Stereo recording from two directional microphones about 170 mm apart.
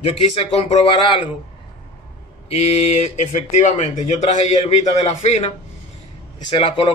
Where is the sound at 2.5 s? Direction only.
40° left (ahead or behind).